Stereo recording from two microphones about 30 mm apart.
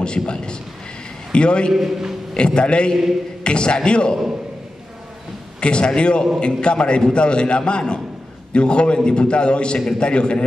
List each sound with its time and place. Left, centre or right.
0.0 s a man's voice: left
1.7 s a man's voice: centre
2.3 s a man's voice: left
5.6 s a man's voice: left